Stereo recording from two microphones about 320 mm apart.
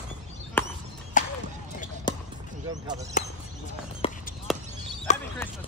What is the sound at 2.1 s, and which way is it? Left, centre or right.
Basketball bounce, centre.